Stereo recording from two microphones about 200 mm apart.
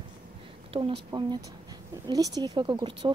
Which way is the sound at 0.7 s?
25° right (ahead or behind).